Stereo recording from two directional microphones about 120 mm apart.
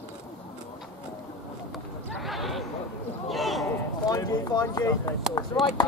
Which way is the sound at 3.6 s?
30° left (ahead or behind).